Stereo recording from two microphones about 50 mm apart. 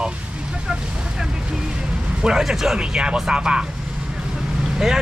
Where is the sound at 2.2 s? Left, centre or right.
Centre.